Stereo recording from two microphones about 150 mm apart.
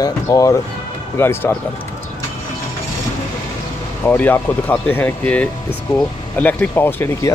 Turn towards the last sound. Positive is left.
turn(degrees=15)  # may be behind; listen again after turning